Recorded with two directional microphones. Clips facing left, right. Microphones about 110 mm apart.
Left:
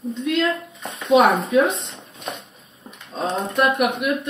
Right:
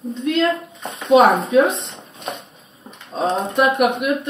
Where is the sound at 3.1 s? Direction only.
Centre (ahead or behind).